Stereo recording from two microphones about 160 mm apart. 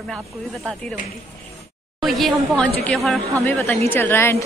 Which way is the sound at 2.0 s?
Centre (ahead or behind).